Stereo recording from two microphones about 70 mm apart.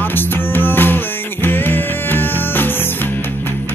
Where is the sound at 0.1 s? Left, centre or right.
Left.